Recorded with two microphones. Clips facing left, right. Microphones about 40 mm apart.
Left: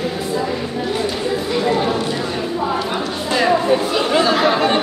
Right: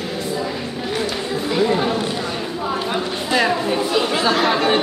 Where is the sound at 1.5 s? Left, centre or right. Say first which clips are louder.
Right 1 dB; centre.